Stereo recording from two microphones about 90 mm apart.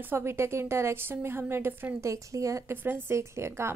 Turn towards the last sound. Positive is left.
turn(degrees=-30)  # may be behind; listen again after turning